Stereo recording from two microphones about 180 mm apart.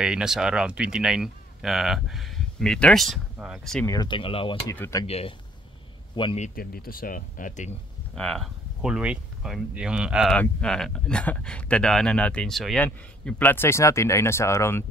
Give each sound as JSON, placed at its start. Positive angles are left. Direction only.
{"t": 0.0, "sound": "speech", "side_deg": -5}
{"t": 3.8, "sound": "speech", "side_deg": 20}
{"t": 4.6, "sound": "speech", "side_deg": 15}
{"t": 5.0, "sound": "speech", "side_deg": 35}
{"t": 6.4, "sound": "speech", "side_deg": 55}
{"t": 8.1, "sound": "speech", "side_deg": 5}